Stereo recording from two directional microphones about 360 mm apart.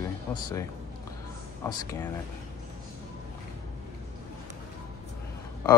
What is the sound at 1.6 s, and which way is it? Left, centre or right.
Speech, centre.